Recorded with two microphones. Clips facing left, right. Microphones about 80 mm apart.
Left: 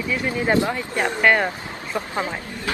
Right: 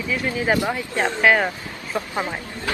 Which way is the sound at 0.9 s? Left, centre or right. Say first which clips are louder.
Even; centre.